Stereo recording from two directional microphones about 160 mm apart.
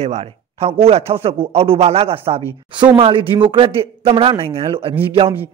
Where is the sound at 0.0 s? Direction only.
40° right (ahead or behind).